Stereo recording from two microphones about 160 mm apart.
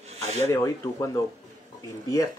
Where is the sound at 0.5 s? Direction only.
20° left (ahead or behind).